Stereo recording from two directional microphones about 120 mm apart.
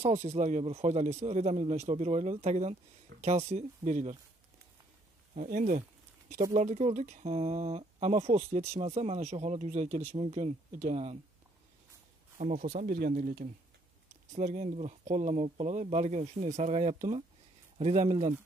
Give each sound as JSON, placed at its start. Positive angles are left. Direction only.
{"t": 0.0, "sound": "speech", "side_deg": -65}
{"t": 5.3, "sound": "a sound", "side_deg": -90}
{"t": 6.5, "sound": "speech", "side_deg": -65}
{"t": 12.4, "sound": "speech", "side_deg": -90}
{"t": 12.7, "sound": "speech", "side_deg": -75}
{"t": 13.4, "sound": "speech", "side_deg": -90}
{"t": 14.3, "sound": "speech", "side_deg": -80}